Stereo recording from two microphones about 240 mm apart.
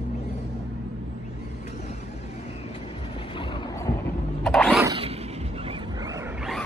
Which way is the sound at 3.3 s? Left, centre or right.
Left.